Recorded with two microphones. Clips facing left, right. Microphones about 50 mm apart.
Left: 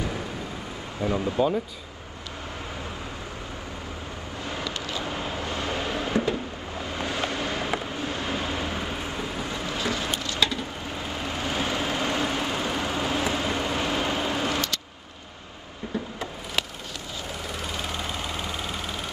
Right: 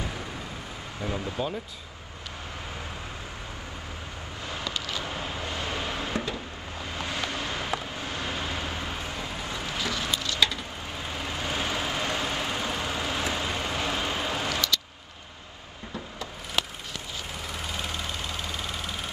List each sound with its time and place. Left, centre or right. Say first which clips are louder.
1.0 s speech: left 6 dB; left
1.4 s speech: left 9 dB; centre
4.7 s vehicle: left 1 dB; left
5.6 s a sound: left 3 dB; left
7.2 s vehicle: left 3 dB; left
9.4 s a sound: left 2 dB; left
11.4 s vehicle: left 2 dB; left
17.8 s engine: left 2 dB; centre